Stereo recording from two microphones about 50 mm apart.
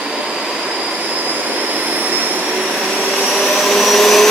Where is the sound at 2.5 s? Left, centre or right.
Right.